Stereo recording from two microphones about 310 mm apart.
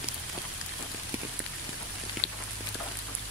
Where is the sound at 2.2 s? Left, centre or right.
Left.